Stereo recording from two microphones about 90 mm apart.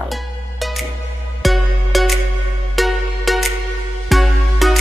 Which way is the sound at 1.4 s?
Centre (ahead or behind).